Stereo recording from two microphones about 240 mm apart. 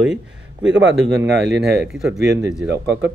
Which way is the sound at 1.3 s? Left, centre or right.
Right.